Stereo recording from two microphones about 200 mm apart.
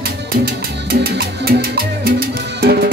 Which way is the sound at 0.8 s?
50° right (ahead or behind).